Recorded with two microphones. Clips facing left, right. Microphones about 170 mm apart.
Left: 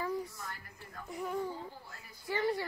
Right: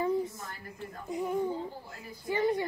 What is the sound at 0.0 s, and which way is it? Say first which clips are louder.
Speech: right 7 dB; 20° right (ahead or behind).